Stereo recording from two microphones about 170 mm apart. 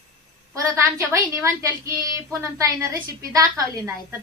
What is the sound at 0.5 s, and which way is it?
A woman's voice, 20° right (ahead or behind).